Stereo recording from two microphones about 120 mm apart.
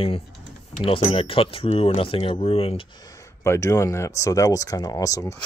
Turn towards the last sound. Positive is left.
turn(degrees=30)  # may be behind; listen again after turning